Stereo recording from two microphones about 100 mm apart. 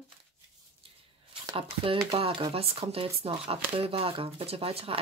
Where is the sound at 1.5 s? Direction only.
60° right (ahead or behind).